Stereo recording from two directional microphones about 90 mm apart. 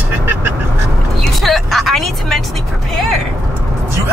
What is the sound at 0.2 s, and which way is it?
Quack, 25° right (ahead or behind).